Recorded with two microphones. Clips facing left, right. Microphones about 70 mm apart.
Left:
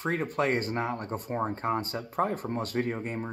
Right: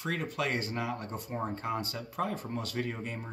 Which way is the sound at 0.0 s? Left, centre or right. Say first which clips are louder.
Left 5 dB; left.